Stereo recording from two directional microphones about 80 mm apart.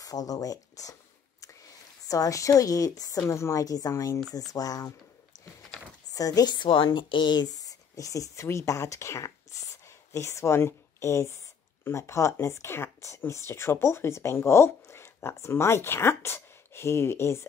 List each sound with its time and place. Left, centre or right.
0.0 s speech: left
2.0 s a woman's voice: left
4.5 s a woman's voice: left
6.1 s a woman's voice: left